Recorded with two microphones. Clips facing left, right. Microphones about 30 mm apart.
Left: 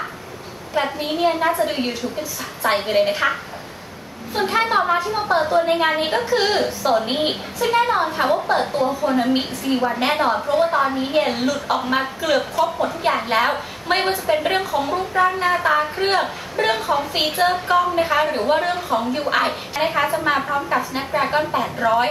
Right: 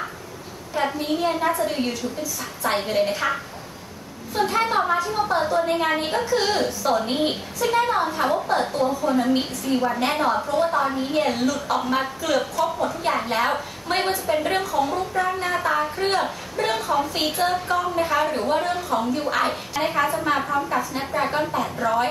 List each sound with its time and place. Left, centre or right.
0.9 s a woman's voice: left